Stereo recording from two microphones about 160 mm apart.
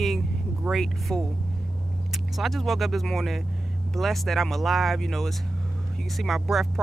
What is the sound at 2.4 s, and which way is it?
Speech, centre (ahead or behind).